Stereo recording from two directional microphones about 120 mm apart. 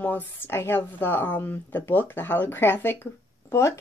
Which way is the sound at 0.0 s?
15° left (ahead or behind).